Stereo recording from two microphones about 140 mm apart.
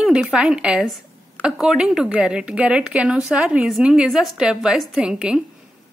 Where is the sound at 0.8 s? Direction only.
5° left (ahead or behind).